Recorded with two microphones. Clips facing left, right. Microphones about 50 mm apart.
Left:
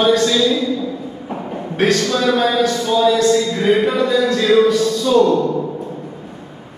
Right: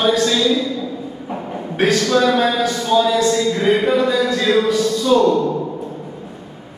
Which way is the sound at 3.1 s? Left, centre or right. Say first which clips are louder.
Left 1 dB; centre.